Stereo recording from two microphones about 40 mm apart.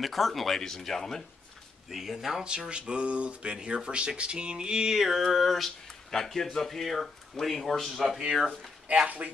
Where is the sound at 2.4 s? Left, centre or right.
Right.